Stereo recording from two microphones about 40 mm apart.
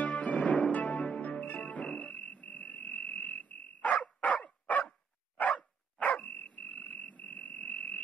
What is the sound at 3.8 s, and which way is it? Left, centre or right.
Dog, left.